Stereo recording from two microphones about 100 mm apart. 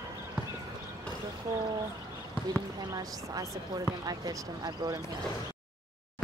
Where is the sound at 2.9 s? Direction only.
35° right (ahead or behind).